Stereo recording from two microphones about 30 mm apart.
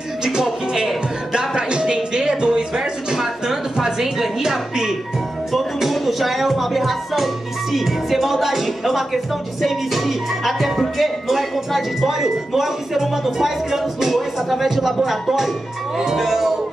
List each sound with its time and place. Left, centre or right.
0.2 s speech: right
1.7 s music: right
4.4 s speech: centre
5.8 s music: centre
7.7 s speech: centre